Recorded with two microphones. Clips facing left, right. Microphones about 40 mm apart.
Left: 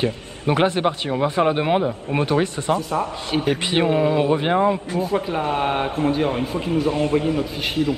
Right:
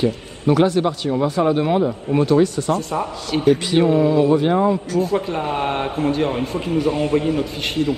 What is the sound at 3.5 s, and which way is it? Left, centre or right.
Speech, left.